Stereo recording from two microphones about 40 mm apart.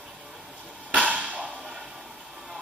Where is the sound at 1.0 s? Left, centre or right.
Right.